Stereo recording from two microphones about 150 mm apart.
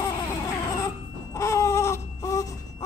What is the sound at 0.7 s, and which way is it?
Baby cry, 20° left (ahead or behind).